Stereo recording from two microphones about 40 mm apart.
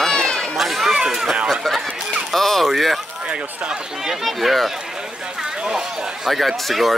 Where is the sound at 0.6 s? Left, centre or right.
Centre.